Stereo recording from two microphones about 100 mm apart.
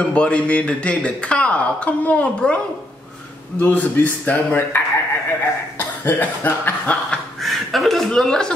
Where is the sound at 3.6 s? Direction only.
15° left (ahead or behind).